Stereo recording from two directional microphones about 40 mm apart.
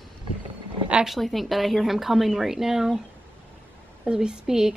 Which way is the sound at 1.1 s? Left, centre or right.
Centre.